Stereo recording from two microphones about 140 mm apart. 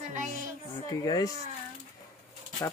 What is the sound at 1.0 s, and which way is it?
Speech, 25° left (ahead or behind).